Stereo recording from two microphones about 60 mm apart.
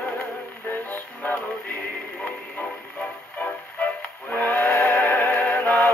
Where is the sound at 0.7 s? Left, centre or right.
Left.